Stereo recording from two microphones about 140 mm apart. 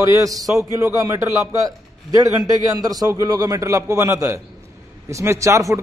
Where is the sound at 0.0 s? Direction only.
25° right (ahead or behind).